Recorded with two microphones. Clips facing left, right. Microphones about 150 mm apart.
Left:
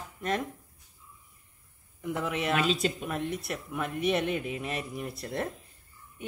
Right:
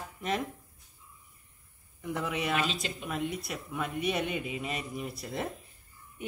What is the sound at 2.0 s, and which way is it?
A woman's voice, centre (ahead or behind).